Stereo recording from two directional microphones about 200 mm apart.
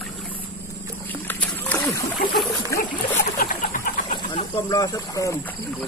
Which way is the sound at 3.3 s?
45° left (ahead or behind).